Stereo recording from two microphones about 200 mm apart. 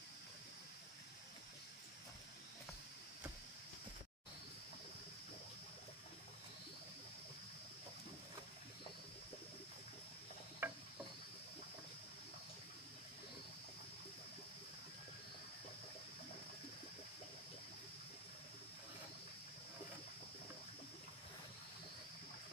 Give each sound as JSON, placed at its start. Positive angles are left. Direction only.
{"t": 10.6, "sound": "insect", "side_deg": -10}